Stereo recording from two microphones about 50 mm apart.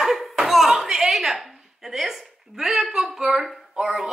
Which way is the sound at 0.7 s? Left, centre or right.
Centre.